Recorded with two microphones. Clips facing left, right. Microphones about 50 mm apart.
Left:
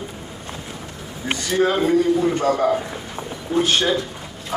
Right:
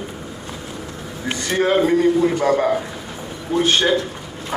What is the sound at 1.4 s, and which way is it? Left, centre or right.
Speech, right.